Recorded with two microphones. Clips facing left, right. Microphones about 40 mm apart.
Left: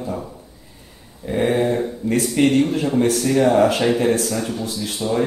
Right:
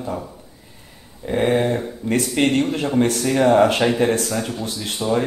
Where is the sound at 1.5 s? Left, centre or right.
Right.